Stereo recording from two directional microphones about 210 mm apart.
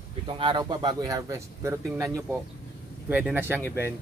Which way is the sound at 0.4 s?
20° right (ahead or behind).